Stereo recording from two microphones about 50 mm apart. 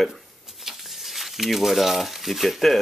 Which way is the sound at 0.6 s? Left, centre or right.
Centre.